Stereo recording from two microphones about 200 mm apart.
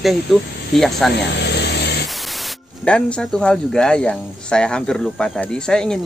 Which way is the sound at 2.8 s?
5° left (ahead or behind).